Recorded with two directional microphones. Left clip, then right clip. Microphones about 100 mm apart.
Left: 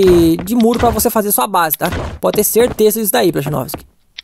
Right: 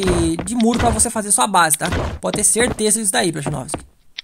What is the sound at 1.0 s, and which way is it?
Speech, 45° left (ahead or behind).